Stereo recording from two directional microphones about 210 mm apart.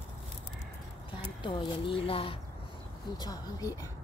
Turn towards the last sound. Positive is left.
turn(degrees=15)  # may be behind; listen again after turning